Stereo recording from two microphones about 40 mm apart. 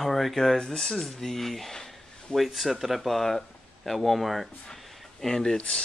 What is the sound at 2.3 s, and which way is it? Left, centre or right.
Speech, centre.